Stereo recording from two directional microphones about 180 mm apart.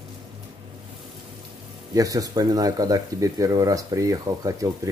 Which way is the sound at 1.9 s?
20° right (ahead or behind).